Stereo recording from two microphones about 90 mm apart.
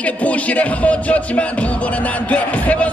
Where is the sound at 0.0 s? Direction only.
15° left (ahead or behind).